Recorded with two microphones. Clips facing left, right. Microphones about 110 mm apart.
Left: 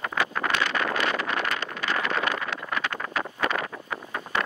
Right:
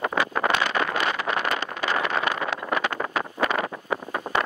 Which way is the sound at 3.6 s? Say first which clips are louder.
Right 5 dB; 20° right (ahead or behind).